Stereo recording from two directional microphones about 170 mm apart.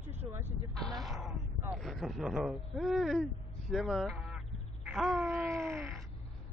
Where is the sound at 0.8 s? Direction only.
Centre (ahead or behind).